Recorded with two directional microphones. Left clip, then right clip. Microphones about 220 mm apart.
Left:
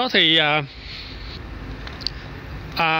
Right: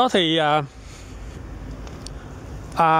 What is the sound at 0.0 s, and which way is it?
Speech, 10° right (ahead or behind).